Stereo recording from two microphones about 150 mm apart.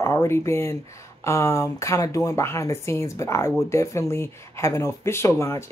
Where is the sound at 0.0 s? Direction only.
20° left (ahead or behind).